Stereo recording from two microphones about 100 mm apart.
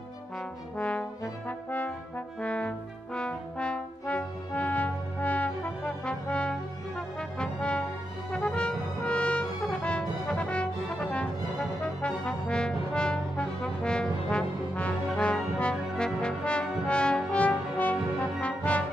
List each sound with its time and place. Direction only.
0.7 s brass instrument: 10° left (ahead or behind)
8.3 s music: 10° left (ahead or behind)
9.6 s brass instrument: 10° left (ahead or behind)